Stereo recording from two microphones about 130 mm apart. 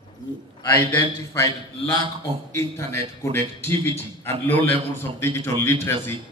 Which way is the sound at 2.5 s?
20° left (ahead or behind).